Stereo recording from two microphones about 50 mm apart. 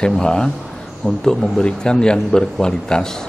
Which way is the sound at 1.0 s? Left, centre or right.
Left.